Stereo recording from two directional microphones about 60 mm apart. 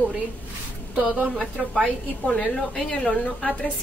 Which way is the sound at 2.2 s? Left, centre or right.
Centre.